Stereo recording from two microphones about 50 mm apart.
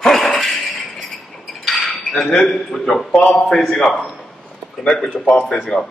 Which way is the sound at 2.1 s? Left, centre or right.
Centre.